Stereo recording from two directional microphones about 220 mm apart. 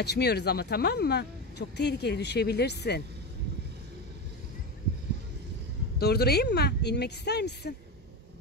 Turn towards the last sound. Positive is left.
turn(degrees=50)  # may be behind; listen again after turning